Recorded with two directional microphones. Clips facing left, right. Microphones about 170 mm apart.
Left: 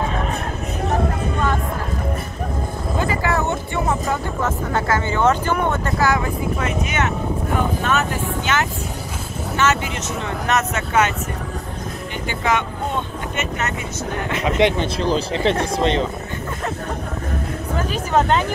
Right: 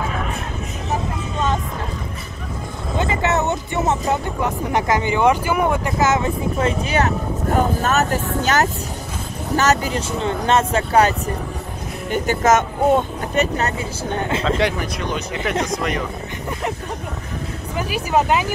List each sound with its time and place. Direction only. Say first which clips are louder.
3.0 s speech: right 2 dB; 25° right (ahead or behind)
14.6 s speech: left 3 dB; 30° left (ahead or behind)
17.7 s speech: even; 10° right (ahead or behind)